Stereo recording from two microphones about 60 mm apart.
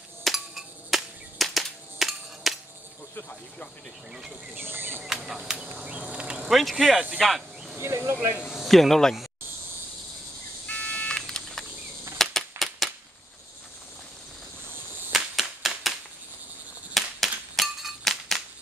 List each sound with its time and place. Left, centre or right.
0.2 s a sound: centre
4.1 s speech: centre
4.6 s insect: right
5.0 s speech: centre
6.5 s speech: centre
7.8 s speech: right
8.5 s speech: centre
10.7 s telephone dialing: left
11.1 s vehicle: centre
12.2 s a sound: centre
15.1 s cap gun: centre
16.9 s a sound: centre